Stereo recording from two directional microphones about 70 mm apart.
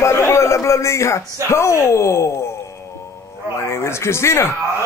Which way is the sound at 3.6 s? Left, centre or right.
Left.